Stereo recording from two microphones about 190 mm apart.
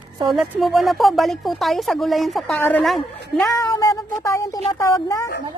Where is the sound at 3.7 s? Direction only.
15° left (ahead or behind).